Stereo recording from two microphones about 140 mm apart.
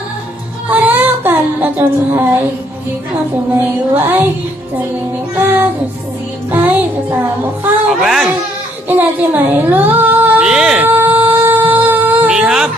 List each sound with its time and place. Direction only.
0.7 s music: 10° right (ahead or behind)
3.5 s music: 15° right (ahead or behind)
5.3 s music: 15° right (ahead or behind)
8.0 s speech: centre (ahead or behind)
8.8 s female singing: 10° right (ahead or behind)
10.9 s music: 15° right (ahead or behind)